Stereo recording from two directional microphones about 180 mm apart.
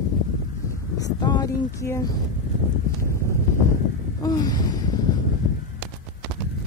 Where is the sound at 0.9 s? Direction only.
20° left (ahead or behind).